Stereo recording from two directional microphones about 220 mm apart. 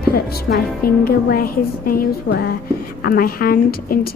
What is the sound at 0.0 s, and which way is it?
A woman's voice, 45° left (ahead or behind).